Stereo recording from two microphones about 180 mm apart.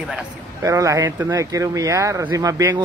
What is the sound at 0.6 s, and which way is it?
Speech, 15° right (ahead or behind).